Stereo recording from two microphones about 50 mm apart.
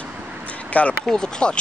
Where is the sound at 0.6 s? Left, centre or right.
Left.